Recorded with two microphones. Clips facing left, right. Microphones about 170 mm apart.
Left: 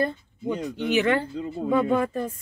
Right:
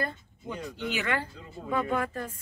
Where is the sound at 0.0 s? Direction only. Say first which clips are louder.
Left 8 dB; 20° left (ahead or behind).